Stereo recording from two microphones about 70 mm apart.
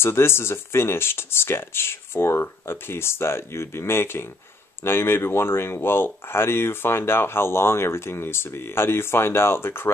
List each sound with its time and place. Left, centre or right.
0.0 s speech: left